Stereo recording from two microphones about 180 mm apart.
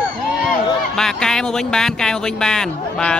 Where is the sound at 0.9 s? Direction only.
5° left (ahead or behind).